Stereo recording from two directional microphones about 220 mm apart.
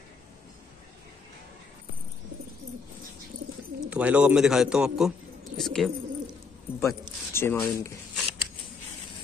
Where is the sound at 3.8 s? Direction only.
5° right (ahead or behind).